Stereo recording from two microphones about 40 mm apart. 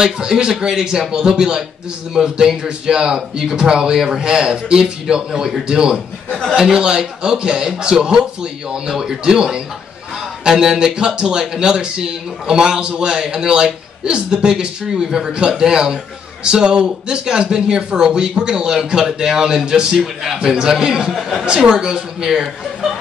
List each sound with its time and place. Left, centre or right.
0.0 s a man's voice: centre
21.1 s speech: centre
21.5 s a man's voice: centre